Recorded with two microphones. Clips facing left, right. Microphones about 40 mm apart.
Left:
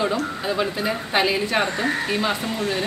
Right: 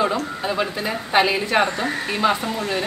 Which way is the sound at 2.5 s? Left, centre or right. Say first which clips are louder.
Even; centre.